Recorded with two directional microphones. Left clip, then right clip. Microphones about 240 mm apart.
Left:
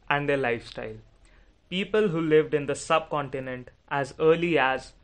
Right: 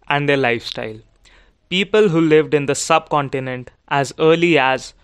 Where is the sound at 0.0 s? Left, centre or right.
Right.